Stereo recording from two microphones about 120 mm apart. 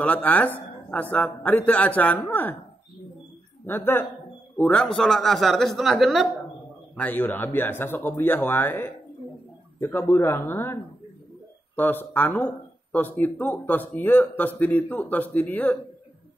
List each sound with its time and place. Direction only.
0.0 s speech: 15° left (ahead or behind)
3.6 s a man's voice: 15° left (ahead or behind); by 6.2 s centre (ahead or behind)
7.0 s speech: 15° left (ahead or behind)